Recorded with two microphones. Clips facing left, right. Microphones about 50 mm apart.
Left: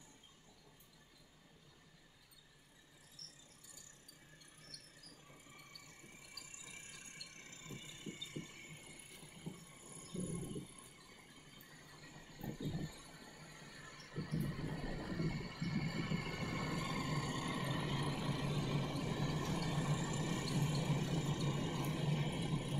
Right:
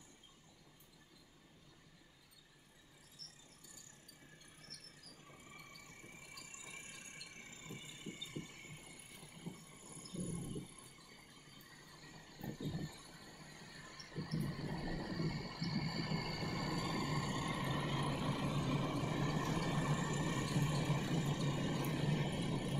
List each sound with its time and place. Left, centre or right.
6.6 s a sound: centre
10.0 s cricket: centre
13.3 s squeal: centre
17.1 s vehicle: centre
18.9 s vehicle: right
20.4 s music: right
20.9 s vehicle: centre